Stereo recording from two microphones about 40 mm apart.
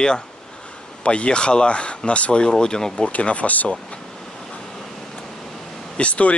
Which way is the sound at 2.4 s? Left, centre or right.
Centre.